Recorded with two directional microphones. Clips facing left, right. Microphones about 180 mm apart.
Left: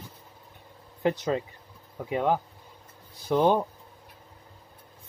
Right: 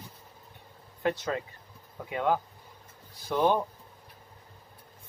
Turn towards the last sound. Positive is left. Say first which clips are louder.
# left 3 dB
turn(degrees=20)  # may be behind; listen again after turning